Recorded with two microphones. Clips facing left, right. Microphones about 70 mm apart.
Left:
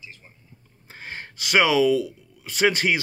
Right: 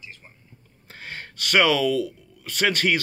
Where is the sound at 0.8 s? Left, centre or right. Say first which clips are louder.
Left 1 dB; centre.